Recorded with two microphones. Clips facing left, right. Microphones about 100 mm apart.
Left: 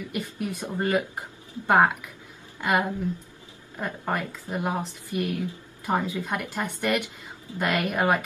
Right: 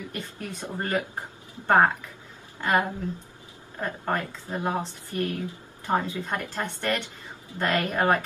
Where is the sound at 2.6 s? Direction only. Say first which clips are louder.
Even; 10° left (ahead or behind).